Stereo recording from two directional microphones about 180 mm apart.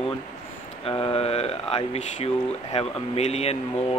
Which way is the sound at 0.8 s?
30° left (ahead or behind).